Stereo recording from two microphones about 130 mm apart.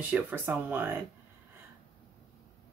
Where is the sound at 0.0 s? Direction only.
15° right (ahead or behind).